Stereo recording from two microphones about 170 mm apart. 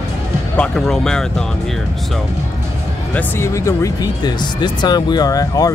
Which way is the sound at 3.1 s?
15° left (ahead or behind).